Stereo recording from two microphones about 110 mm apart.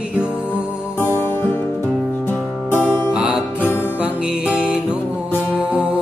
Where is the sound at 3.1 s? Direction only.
10° right (ahead or behind).